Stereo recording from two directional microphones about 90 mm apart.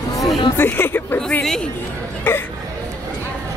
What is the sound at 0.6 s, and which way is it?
Speech, 25° left (ahead or behind).